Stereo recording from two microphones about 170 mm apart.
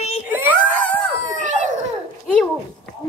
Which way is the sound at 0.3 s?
10° right (ahead or behind).